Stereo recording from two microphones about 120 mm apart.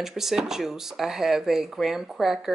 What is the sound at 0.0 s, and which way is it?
Speech, 5° right (ahead or behind).